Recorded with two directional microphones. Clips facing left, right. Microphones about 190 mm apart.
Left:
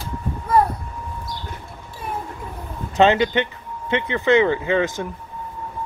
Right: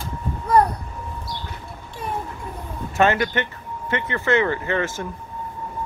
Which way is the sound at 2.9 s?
20° left (ahead or behind).